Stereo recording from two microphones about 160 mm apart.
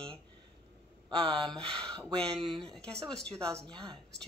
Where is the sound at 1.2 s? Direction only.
30° right (ahead or behind).